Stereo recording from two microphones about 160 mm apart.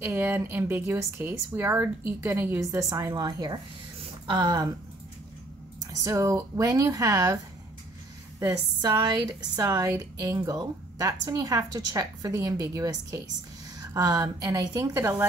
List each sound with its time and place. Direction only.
0.0 s a woman's voice: 15° right (ahead or behind)
5.9 s a woman's voice: 20° right (ahead or behind)
8.4 s a woman's voice: 25° right (ahead or behind)